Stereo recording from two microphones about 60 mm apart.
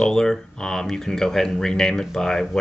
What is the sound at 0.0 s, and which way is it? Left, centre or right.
Speech, centre.